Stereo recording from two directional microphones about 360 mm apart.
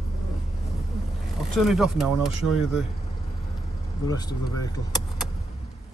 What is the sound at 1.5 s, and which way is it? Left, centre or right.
Speech, centre.